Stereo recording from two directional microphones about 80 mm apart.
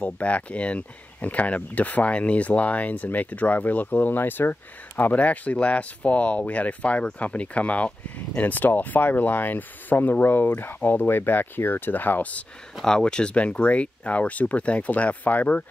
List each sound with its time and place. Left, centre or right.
0.0 s speech: centre